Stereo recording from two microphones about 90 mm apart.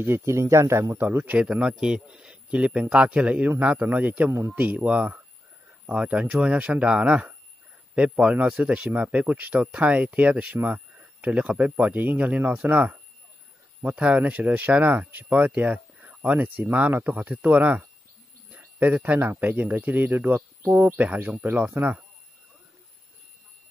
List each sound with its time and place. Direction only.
0.0 s a man's voice: 30° right (ahead or behind)
1.4 s a man's voice: 10° right (ahead or behind)